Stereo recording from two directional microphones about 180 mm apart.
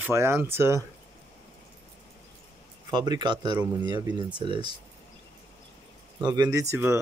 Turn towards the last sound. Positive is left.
turn(degrees=-15)  # may be behind; listen again after turning